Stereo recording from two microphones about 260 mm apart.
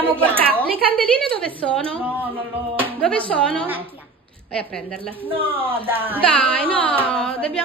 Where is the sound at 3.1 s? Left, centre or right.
Centre.